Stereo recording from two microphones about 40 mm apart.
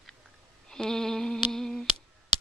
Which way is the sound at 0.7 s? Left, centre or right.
Centre.